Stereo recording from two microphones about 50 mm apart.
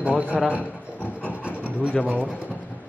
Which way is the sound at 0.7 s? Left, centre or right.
Right.